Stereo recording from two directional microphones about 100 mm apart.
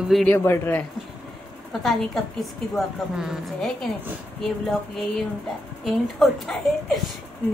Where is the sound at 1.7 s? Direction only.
Centre (ahead or behind).